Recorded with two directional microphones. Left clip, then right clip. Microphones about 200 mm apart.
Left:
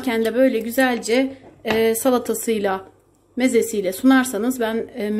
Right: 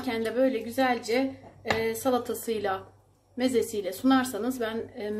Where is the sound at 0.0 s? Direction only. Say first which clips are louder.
Left 8 dB; 40° left (ahead or behind).